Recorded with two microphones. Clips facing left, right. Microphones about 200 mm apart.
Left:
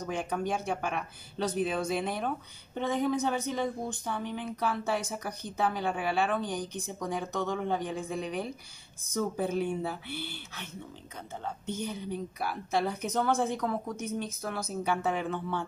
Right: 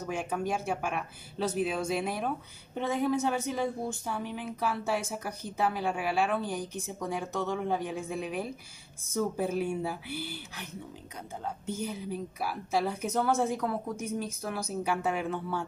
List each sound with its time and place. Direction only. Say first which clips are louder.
0.0 s a woman's voice: even; 5° right (ahead or behind)